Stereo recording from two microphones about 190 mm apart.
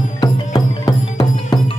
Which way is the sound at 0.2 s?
20° left (ahead or behind).